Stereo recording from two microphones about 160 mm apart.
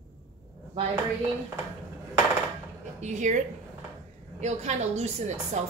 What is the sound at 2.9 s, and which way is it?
Speech, 50° right (ahead or behind).